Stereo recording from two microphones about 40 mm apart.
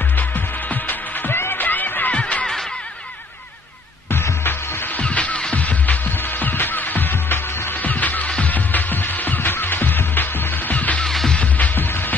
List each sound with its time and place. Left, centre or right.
0.2 s music: left
1.3 s music: left
2.1 s a sound: left
4.1 s music: left
5.0 s music: left
6.2 s music: left
7.8 s music: left
11.1 s music: centre
11.7 s music: left